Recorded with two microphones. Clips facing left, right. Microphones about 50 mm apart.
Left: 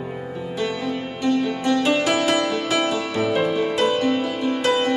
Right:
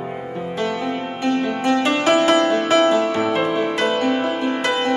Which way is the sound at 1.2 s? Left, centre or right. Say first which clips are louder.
Right 1 dB; right.